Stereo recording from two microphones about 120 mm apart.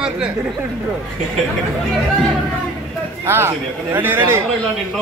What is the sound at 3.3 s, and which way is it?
Speech, 20° right (ahead or behind).